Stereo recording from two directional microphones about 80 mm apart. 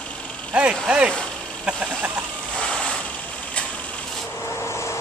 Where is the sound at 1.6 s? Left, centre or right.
Centre.